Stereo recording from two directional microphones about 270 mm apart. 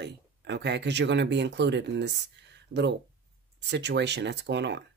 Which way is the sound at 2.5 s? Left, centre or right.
Right.